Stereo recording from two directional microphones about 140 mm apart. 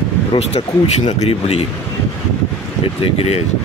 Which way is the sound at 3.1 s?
50° left (ahead or behind).